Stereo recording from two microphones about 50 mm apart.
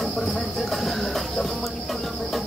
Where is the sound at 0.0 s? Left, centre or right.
Centre.